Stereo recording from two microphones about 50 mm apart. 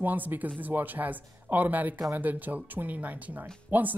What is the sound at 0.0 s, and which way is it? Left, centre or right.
Speech, right.